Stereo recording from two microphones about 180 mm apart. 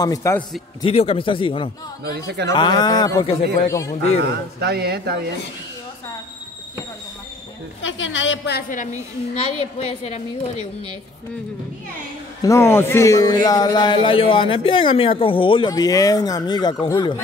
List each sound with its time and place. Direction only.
0.0 s a man's voice: 20° left (ahead or behind)
0.8 s a man's voice: 30° left (ahead or behind)
2.1 s speech: 70° right (ahead or behind)
2.5 s a man's voice: 25° left (ahead or behind)
4.2 s speech: 65° right (ahead or behind)
7.8 s a woman's voice: 90° left
8.6 s a woman's voice: 45° left (ahead or behind)
12.4 s a man's voice: 15° left (ahead or behind)